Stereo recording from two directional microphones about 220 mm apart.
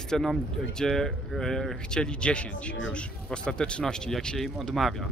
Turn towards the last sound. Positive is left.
turn(degrees=0)  # may be behind; listen again after turning